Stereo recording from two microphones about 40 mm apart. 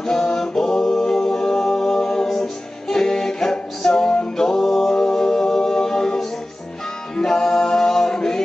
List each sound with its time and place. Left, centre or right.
0.0 s a capella: centre
7.2 s music: centre